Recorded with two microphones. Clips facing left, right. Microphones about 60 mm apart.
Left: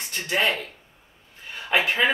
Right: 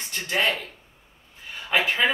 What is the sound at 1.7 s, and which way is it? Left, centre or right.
Speech, centre.